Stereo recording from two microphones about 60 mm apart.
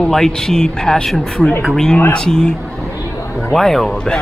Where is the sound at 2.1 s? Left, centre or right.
Centre.